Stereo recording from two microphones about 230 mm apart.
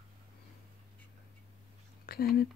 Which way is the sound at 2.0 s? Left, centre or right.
Left.